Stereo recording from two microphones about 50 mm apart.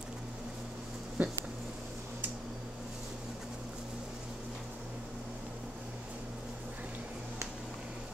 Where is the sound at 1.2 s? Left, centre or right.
Right.